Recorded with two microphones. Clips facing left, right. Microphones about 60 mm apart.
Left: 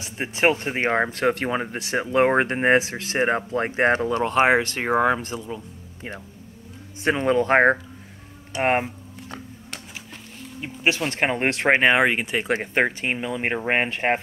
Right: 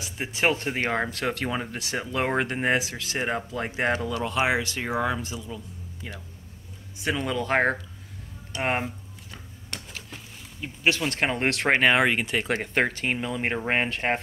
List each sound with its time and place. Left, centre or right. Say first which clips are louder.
0.0 s speech: left 4 dB; left
7.0 s speech: left 7 dB; left
10.6 s speech: left 2 dB; centre